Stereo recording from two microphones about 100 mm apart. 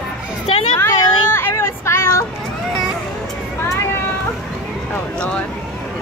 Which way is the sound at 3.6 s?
25° left (ahead or behind).